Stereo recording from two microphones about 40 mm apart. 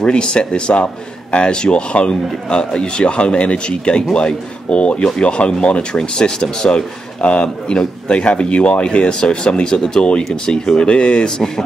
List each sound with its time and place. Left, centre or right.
0.0 s speech: left